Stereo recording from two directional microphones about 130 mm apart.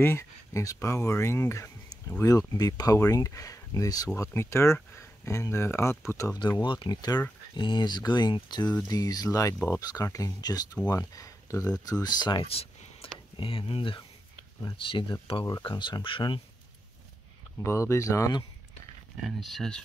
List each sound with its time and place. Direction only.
0.0 s speech: 20° left (ahead or behind)
6.6 s speech: 35° left (ahead or behind)
12.4 s a sound: 50° left (ahead or behind)
13.4 s speech: 45° left (ahead or behind)
17.6 s speech: 20° left (ahead or behind)
19.2 s speech: centre (ahead or behind)